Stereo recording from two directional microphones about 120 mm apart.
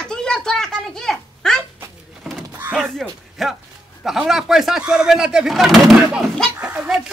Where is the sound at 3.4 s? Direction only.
Centre (ahead or behind).